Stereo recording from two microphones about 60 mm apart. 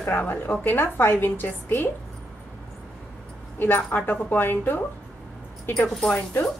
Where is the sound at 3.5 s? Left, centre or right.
Left.